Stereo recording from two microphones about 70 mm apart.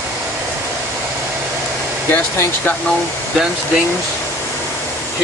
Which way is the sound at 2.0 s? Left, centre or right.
Left.